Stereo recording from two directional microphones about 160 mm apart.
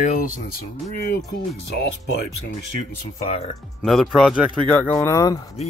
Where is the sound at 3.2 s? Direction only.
45° left (ahead or behind).